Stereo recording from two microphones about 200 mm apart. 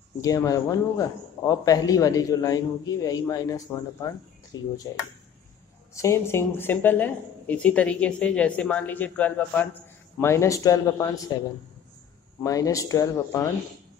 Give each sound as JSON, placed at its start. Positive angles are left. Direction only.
{"t": 0.2, "sound": "a man's voice", "side_deg": 15}
{"t": 5.9, "sound": "a man's voice", "side_deg": 15}
{"t": 12.4, "sound": "a man's voice", "side_deg": 15}